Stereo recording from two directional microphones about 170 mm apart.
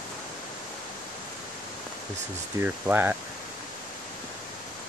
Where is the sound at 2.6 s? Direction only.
10° right (ahead or behind).